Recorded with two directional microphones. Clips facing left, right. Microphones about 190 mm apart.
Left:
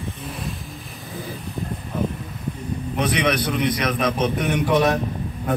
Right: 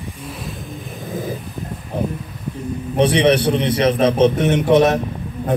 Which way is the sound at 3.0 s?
30° right (ahead or behind).